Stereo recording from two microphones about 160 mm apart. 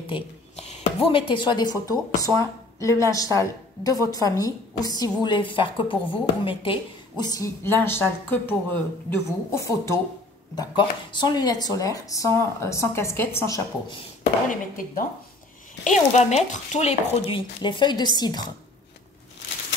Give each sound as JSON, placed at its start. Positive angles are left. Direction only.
{"t": 0.0, "sound": "a woman's voice", "side_deg": 35}
{"t": 10.5, "sound": "a woman's voice", "side_deg": 25}
{"t": 14.5, "sound": "speech", "side_deg": 55}
{"t": 16.1, "sound": "stir", "side_deg": 45}
{"t": 17.6, "sound": "a woman's voice", "side_deg": 30}